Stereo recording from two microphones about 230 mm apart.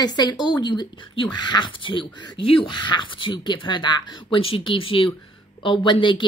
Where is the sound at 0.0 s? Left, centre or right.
Centre.